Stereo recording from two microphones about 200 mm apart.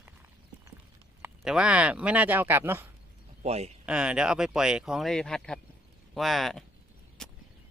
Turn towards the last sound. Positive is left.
turn(degrees=5)  # may be behind; listen again after turning